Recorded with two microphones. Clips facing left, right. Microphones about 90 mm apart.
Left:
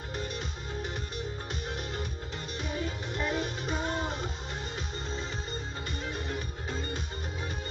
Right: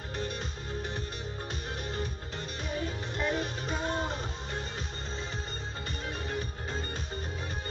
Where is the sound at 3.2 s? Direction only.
35° right (ahead or behind).